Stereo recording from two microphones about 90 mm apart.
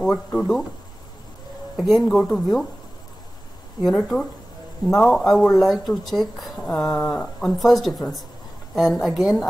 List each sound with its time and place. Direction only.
0.0 s speech: 5° left (ahead or behind)
1.8 s speech: centre (ahead or behind)
4.8 s speech: 5° left (ahead or behind)